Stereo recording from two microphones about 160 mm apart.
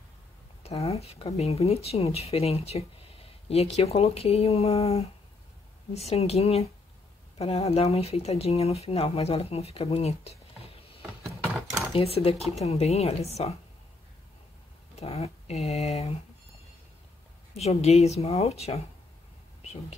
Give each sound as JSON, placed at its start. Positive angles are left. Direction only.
{"t": 0.7, "sound": "speech", "side_deg": 40}
{"t": 11.2, "sound": "a sound", "side_deg": 0}
{"t": 11.9, "sound": "speech", "side_deg": 40}
{"t": 15.0, "sound": "speech", "side_deg": 40}
{"t": 17.6, "sound": "speech", "side_deg": 40}